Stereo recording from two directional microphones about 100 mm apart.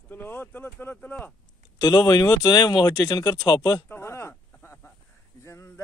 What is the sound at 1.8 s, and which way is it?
Speech, 40° left (ahead or behind).